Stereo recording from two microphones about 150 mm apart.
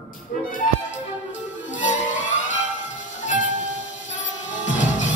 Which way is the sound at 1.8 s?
55° left (ahead or behind).